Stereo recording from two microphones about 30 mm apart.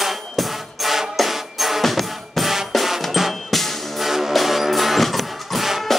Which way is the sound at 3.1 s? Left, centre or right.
Centre.